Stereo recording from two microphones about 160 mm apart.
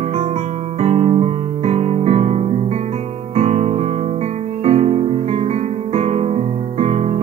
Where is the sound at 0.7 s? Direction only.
40° right (ahead or behind).